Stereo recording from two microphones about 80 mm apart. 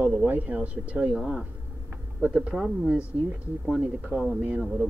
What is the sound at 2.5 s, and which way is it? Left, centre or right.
Speech, centre.